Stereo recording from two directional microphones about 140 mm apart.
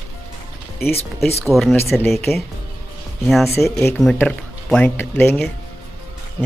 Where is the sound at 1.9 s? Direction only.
15° left (ahead or behind).